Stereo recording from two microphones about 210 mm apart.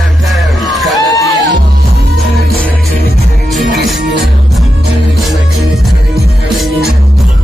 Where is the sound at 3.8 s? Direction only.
Centre (ahead or behind).